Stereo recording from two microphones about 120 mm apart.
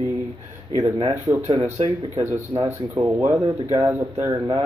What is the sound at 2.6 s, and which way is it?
Speech, 20° right (ahead or behind).